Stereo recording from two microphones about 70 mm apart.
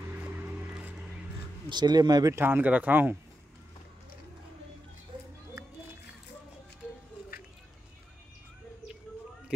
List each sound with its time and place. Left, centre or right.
0.1 s boat: right
1.7 s speech: right
2.3 s a man's voice: right